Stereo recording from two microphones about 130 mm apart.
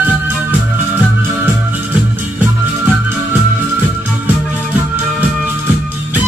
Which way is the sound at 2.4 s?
15° right (ahead or behind).